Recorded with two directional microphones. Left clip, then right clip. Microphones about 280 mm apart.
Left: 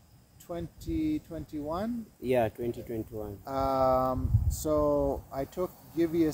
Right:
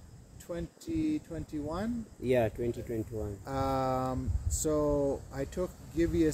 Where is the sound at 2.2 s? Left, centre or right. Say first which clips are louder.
Left 1 dB; centre.